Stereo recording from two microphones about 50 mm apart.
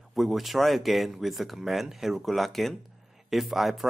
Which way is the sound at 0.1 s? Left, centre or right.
Centre.